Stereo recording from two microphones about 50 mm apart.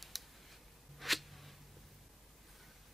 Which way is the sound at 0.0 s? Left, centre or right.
Centre.